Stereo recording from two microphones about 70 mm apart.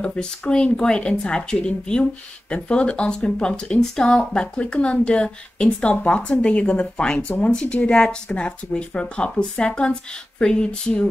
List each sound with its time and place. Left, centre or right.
0.0 s speech: centre